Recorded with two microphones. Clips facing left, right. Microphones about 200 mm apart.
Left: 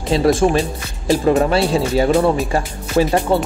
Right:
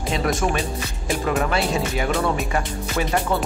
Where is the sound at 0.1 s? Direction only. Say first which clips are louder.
Left 9 dB; 30° left (ahead or behind).